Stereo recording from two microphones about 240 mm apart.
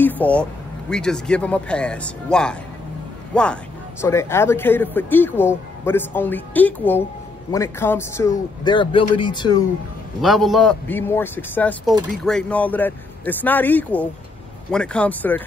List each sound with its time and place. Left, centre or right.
0.0 s speech: centre
10.2 s speech: centre